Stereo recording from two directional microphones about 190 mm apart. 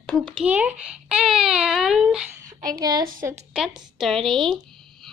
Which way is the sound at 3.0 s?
45° right (ahead or behind).